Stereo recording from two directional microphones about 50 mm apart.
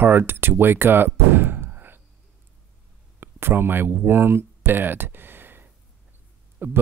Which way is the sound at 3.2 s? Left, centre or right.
Right.